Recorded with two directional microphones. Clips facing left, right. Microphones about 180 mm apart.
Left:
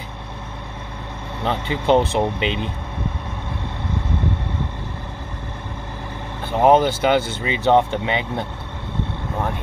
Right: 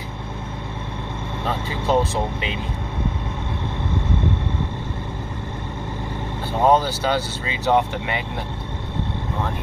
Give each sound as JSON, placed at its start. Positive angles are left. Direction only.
{"t": 1.9, "sound": "speech", "side_deg": 20}
{"t": 6.6, "sound": "speech", "side_deg": 20}